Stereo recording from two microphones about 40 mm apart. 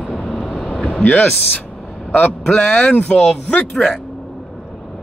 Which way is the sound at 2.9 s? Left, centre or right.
Left.